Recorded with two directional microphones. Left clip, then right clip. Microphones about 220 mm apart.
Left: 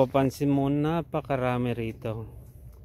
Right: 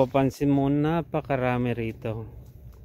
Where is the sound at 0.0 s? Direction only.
Centre (ahead or behind).